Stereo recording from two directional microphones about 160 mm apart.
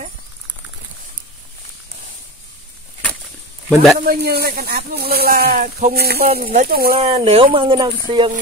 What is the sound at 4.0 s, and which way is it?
Speech, 70° right (ahead or behind).